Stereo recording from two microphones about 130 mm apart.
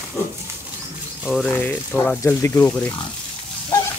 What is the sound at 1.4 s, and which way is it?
Speech, 15° left (ahead or behind).